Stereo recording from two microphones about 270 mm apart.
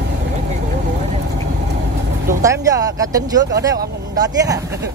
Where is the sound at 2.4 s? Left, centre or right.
Centre.